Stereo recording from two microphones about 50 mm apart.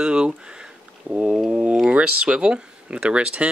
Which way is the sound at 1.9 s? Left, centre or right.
Right.